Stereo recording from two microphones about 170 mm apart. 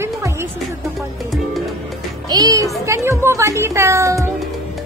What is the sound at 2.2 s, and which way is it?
A child's voice, 20° right (ahead or behind).